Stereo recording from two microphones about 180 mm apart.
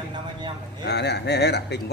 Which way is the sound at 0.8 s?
65° left (ahead or behind).